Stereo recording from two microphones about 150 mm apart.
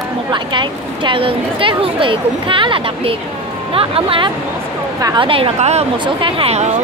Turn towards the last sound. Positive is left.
turn(degrees=-40)  # may be behind; listen again after turning